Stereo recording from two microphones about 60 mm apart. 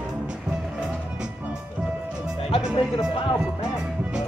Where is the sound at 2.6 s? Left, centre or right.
Centre.